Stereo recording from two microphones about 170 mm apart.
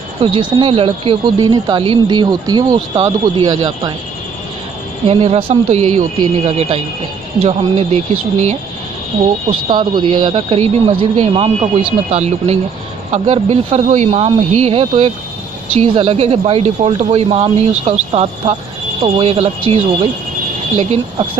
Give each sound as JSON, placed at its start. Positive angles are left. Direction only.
{"t": 0.2, "sound": "speech", "side_deg": -30}
{"t": 5.0, "sound": "speech", "side_deg": -35}
{"t": 9.5, "sound": "speech", "side_deg": -25}